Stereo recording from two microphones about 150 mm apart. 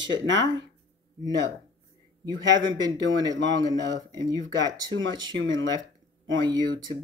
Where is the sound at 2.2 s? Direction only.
30° right (ahead or behind).